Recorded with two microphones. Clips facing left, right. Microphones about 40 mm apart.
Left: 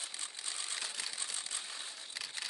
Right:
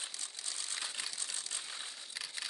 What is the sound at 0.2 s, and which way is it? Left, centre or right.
Crushing, left.